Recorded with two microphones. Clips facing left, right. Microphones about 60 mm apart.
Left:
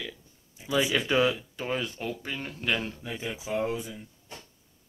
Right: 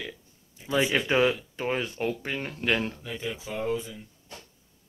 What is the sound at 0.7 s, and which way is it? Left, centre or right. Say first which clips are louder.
Speech: right 1 dB; right.